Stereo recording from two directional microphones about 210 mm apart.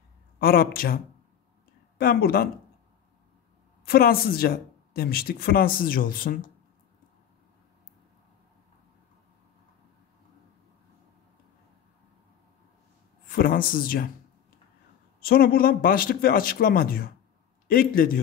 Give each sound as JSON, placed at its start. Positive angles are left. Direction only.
{"t": 0.4, "sound": "speech", "side_deg": 45}
{"t": 3.8, "sound": "speech", "side_deg": 45}
{"t": 13.3, "sound": "speech", "side_deg": 45}
{"t": 15.1, "sound": "speech", "side_deg": 45}